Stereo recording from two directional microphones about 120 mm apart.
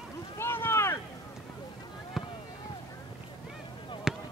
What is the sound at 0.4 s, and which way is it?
Boat, 20° left (ahead or behind).